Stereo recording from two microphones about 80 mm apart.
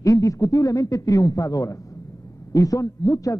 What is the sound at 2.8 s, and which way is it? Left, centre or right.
Speech, left.